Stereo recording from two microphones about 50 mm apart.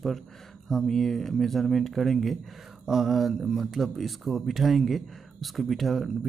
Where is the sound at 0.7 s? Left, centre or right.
Centre.